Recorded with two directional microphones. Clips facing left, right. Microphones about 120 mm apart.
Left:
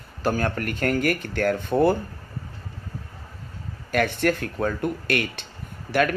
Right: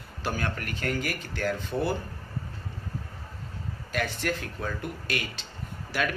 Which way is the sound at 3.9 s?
55° left (ahead or behind).